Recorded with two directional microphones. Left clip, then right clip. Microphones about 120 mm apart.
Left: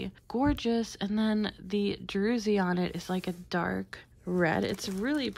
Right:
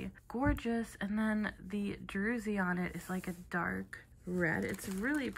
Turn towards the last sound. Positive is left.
turn(degrees=30)  # may be behind; listen again after turning